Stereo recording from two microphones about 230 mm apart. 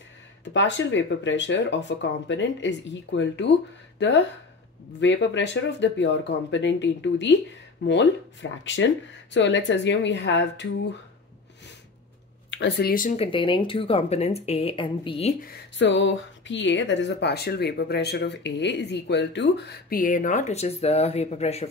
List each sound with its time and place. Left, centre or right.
0.5 s a woman's voice: left
5.0 s a woman's voice: left
12.4 s speech: left
15.4 s a woman's voice: left